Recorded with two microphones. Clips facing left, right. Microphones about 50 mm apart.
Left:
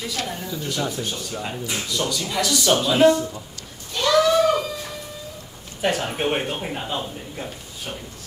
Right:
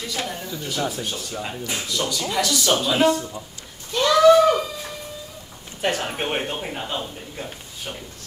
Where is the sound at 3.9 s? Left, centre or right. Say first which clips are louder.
Even; centre.